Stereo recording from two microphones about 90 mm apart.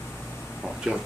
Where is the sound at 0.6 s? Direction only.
5° right (ahead or behind).